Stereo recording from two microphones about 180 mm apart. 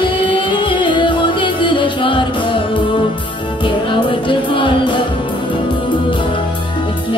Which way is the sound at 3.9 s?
30° left (ahead or behind).